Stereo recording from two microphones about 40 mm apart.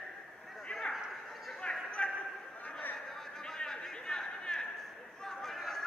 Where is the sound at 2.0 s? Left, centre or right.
Left.